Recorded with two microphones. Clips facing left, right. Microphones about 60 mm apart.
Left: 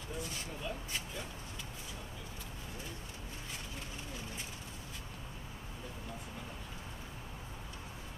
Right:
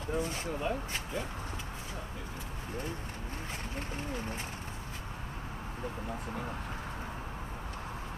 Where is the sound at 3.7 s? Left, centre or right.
Right.